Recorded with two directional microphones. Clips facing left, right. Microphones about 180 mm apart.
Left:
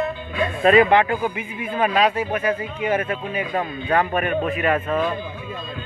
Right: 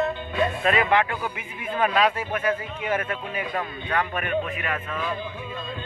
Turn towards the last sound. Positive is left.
turn(degrees=40)  # may be behind; listen again after turning